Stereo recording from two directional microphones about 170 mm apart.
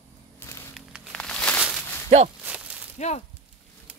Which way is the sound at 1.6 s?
5° right (ahead or behind).